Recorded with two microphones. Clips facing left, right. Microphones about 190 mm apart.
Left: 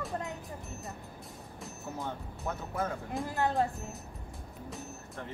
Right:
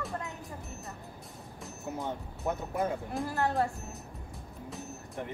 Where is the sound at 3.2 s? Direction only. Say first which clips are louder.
Even; 15° left (ahead or behind).